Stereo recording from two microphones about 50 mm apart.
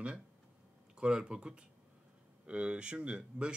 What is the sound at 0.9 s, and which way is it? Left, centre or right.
Speech, centre.